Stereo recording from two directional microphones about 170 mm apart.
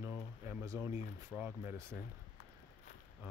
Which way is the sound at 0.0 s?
15° right (ahead or behind).